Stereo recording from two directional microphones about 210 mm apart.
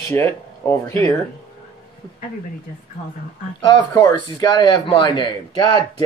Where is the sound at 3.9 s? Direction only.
20° left (ahead or behind).